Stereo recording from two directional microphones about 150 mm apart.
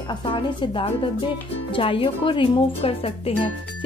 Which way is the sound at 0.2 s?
35° left (ahead or behind).